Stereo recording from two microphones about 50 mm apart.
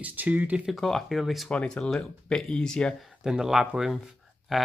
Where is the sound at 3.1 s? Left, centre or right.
Centre.